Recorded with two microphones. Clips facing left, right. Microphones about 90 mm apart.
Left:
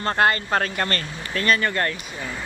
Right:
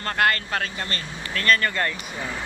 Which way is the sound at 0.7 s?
60° left (ahead or behind).